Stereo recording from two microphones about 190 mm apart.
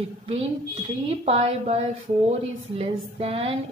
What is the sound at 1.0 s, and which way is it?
A woman's voice, 30° right (ahead or behind).